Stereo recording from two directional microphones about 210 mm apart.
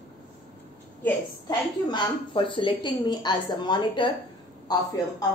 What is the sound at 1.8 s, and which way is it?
A woman's voice, 20° left (ahead or behind).